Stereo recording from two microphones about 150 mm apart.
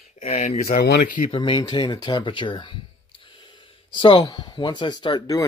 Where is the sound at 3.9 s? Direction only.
30° left (ahead or behind).